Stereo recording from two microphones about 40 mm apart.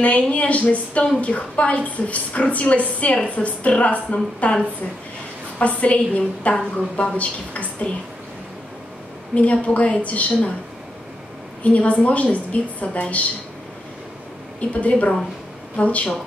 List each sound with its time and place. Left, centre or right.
0.0 s a woman's voice: left
5.6 s a woman's voice: left
9.3 s a woman's voice: left
11.6 s a woman's voice: left
14.6 s a woman's voice: left